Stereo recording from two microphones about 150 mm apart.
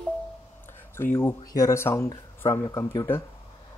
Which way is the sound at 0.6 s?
15° left (ahead or behind).